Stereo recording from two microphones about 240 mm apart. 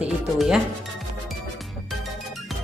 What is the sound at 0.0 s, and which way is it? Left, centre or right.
Music, centre.